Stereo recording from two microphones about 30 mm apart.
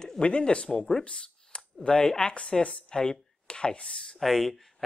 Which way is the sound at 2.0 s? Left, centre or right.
Left.